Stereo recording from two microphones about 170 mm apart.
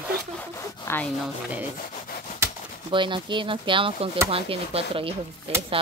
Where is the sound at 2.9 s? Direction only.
30° right (ahead or behind).